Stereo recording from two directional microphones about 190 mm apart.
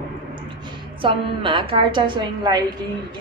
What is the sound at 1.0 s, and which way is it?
A woman's voice, 25° right (ahead or behind).